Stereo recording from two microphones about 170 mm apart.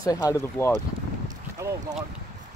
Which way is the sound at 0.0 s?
20° left (ahead or behind).